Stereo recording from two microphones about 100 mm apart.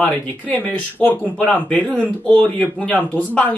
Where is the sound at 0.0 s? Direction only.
15° left (ahead or behind).